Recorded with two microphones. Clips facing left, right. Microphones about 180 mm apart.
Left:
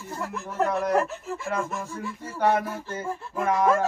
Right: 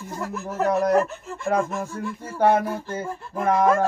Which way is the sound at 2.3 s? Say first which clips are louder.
Right 4 dB; 50° right (ahead or behind).